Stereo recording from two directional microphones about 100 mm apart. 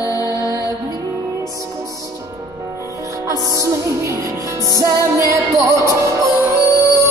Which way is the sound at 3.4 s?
35° right (ahead or behind).